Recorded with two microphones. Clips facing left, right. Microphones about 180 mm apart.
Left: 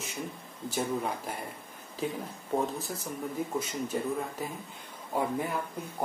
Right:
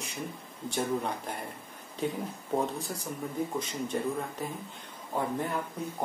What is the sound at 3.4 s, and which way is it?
Speech, 5° left (ahead or behind).